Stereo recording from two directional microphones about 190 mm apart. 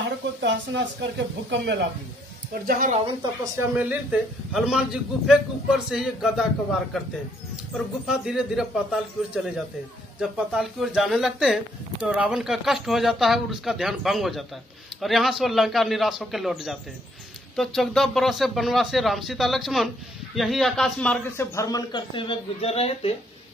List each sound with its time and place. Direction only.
0.4 s speech: 65° right (ahead or behind)
2.6 s speech: 45° right (ahead or behind)
3.5 s a man's voice: 5° right (ahead or behind); by 23.1 s 30° left (ahead or behind)